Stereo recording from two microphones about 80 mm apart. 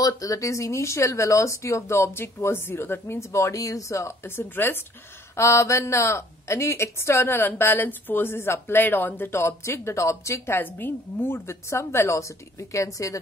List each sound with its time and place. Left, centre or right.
0.0 s a woman's voice: left